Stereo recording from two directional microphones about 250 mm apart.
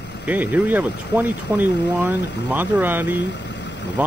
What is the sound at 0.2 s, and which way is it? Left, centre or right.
Speech, centre.